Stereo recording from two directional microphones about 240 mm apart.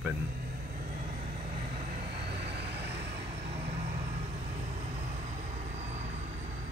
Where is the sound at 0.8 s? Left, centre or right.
Right.